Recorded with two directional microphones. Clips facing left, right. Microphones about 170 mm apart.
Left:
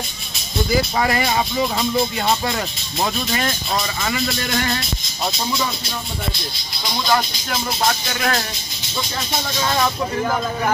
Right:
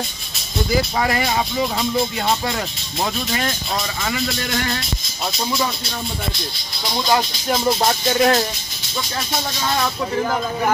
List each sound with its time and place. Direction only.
8.1 s speech: 25° right (ahead or behind)